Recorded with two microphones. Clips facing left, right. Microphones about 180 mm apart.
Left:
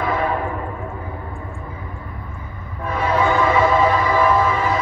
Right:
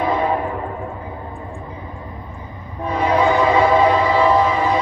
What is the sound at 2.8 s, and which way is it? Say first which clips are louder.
Train: right 3 dB; 15° right (ahead or behind).